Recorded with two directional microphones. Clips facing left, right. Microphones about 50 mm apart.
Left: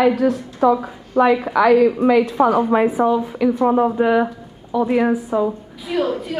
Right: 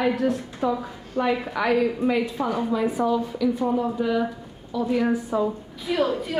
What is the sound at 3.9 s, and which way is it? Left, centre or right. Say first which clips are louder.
Speech: left 7 dB; left.